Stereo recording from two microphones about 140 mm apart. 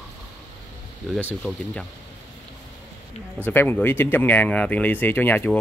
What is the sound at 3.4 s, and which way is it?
Speech, 15° left (ahead or behind).